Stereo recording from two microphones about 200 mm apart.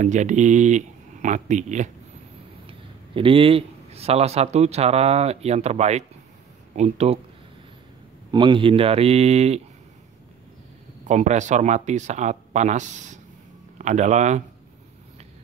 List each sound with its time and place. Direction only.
0.0 s a man's voice: 35° right (ahead or behind)
3.2 s a man's voice: 25° right (ahead or behind)
8.3 s speech: 25° right (ahead or behind)
11.1 s a man's voice: 35° right (ahead or behind)